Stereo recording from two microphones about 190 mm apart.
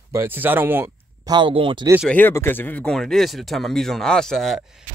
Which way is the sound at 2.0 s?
10° left (ahead or behind).